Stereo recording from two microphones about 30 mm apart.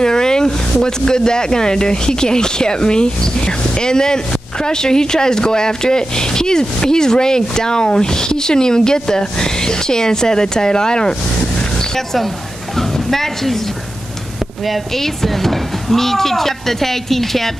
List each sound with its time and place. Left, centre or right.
0.0 s a sound: left
0.8 s speech: left
12.7 s a woman's voice: centre
14.7 s speech: centre